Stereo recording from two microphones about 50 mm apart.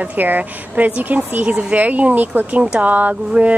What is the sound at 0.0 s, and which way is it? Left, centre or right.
Speech, right.